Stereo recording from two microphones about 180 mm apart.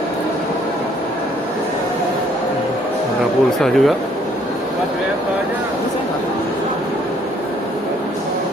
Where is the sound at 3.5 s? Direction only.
Centre (ahead or behind).